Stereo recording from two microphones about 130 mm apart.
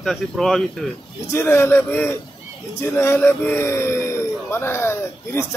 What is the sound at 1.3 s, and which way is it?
A man's voice, 20° left (ahead or behind).